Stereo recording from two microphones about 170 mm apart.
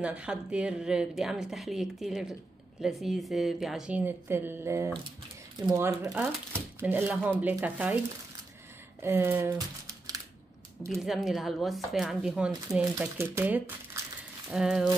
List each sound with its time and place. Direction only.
0.0 s speech: 5° right (ahead or behind)
9.0 s speech: 15° right (ahead or behind)
9.6 s typing: 20° right (ahead or behind)
10.9 s speech: centre (ahead or behind)
14.5 s speech: centre (ahead or behind)